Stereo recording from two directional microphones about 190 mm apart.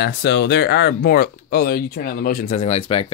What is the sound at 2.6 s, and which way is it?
Speech, 35° left (ahead or behind).